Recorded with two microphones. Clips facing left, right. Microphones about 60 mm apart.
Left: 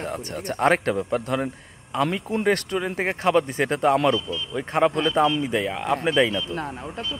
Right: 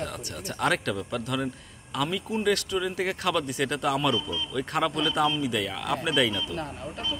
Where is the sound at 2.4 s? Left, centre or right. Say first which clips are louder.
Left 3 dB; left.